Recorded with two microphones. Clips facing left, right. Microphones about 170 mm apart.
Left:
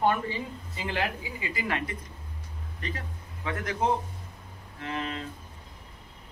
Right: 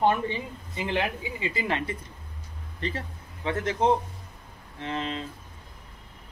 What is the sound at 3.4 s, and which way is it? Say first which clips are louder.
Speech: right 4 dB; 25° right (ahead or behind).